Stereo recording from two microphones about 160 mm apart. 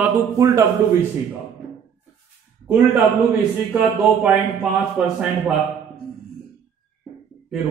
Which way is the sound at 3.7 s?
10° right (ahead or behind).